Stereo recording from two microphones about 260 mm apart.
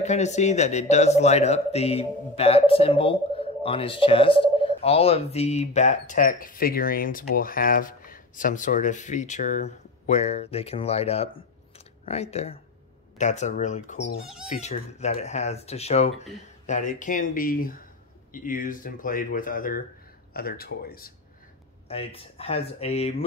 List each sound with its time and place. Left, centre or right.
0.0 s speech: left
21.8 s speech: left